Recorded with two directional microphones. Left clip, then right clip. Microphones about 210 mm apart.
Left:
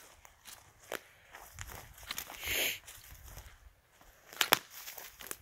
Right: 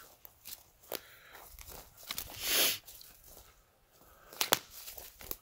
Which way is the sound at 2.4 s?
35° right (ahead or behind).